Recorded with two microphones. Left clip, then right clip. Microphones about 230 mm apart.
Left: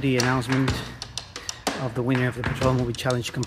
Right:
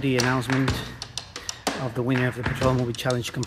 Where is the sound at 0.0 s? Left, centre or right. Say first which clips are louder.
Even; centre.